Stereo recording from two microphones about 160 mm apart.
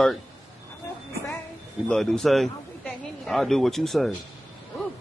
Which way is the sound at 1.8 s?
5° left (ahead or behind).